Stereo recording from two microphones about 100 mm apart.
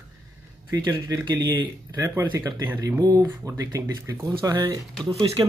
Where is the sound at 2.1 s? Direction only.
20° right (ahead or behind).